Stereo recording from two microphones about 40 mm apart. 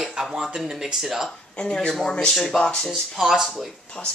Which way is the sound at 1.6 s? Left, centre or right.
Centre.